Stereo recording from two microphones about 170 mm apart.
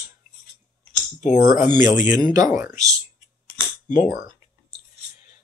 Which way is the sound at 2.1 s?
20° right (ahead or behind).